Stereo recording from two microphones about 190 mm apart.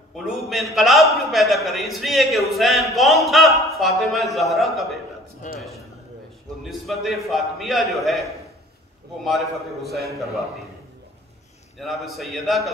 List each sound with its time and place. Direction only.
0.1 s a man's voice: centre (ahead or behind)
5.4 s a man's voice: 40° left (ahead or behind)
6.6 s a man's voice: centre (ahead or behind)
9.8 s a man's voice: 55° right (ahead or behind)
11.8 s a man's voice: centre (ahead or behind)